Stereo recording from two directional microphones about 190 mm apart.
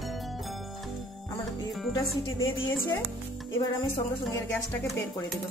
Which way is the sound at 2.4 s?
15° left (ahead or behind).